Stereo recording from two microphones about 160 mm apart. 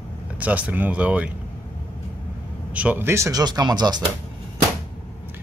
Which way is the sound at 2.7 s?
10° right (ahead or behind).